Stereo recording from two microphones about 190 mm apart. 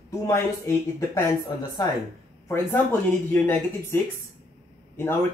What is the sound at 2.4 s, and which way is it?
A man's voice, 15° left (ahead or behind).